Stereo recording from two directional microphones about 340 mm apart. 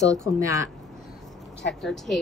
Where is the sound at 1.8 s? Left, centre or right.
Centre.